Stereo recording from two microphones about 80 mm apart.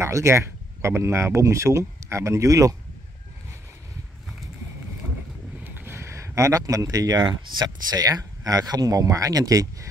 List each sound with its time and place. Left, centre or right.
0.0 s speech: right
5.6 s speech: right